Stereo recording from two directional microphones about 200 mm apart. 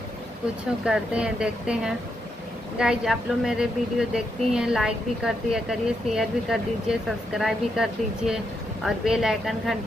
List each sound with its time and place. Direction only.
0.8 s speech: 5° right (ahead or behind)